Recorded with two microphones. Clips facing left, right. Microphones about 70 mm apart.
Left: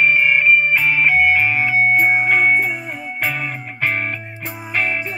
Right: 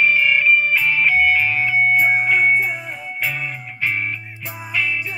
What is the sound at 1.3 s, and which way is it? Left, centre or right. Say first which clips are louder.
Music: left 2 dB; left.